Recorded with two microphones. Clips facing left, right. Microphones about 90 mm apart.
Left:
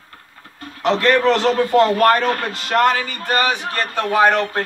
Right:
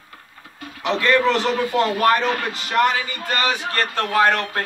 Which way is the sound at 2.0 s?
50° left (ahead or behind).